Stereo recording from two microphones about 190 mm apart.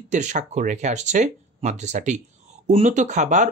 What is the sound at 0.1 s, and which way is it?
Speech, 40° right (ahead or behind).